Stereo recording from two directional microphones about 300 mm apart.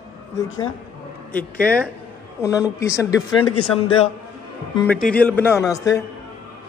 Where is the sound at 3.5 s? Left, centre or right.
Left.